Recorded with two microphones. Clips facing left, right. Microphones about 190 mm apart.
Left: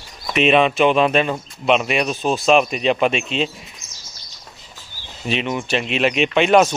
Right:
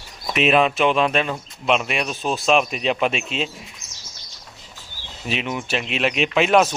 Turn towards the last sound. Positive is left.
turn(degrees=0)  # may be behind; listen again after turning